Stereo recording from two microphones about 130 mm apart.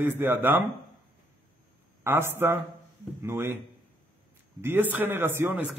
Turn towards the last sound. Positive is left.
turn(degrees=-15)  # may be behind; listen again after turning